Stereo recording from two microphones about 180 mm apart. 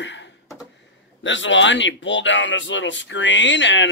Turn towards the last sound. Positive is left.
turn(degrees=90)